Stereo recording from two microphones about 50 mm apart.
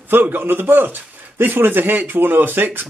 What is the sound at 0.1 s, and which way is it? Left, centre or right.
Speech, right.